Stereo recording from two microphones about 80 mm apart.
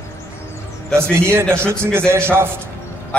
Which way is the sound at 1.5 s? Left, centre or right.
Right.